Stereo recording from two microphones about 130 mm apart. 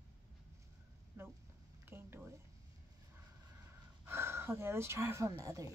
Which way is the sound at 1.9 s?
15° right (ahead or behind).